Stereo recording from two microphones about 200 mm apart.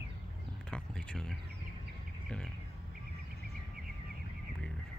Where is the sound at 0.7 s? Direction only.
5° left (ahead or behind).